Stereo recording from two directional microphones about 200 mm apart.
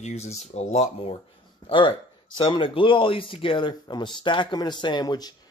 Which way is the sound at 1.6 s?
25° left (ahead or behind).